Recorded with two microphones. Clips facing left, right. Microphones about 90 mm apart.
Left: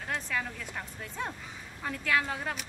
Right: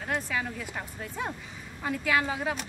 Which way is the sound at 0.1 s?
5° right (ahead or behind).